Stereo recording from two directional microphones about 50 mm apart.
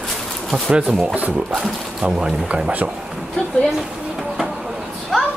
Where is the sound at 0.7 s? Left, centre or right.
Right.